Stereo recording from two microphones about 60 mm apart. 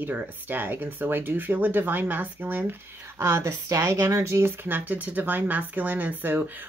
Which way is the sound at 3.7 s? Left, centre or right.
Right.